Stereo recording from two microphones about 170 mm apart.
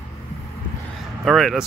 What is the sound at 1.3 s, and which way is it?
Speech, centre (ahead or behind).